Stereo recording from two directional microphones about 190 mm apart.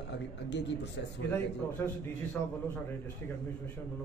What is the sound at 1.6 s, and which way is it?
Speech, 15° left (ahead or behind).